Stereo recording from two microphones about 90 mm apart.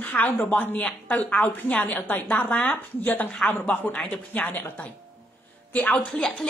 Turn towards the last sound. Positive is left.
turn(degrees=10)  # may be behind; listen again after turning